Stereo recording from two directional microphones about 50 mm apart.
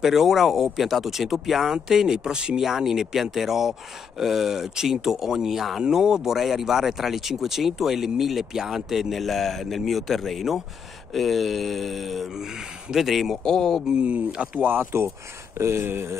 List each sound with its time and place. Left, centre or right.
0.0 s speech: centre
13.4 s a man's voice: centre
13.9 s speech: right
14.6 s speech: right